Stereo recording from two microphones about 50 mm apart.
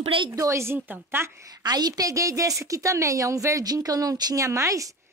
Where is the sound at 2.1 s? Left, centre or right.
Right.